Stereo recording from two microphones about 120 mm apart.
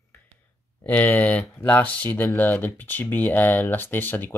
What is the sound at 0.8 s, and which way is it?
Speech, 20° left (ahead or behind).